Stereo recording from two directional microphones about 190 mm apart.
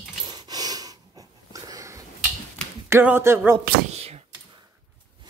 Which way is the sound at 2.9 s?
10° right (ahead or behind).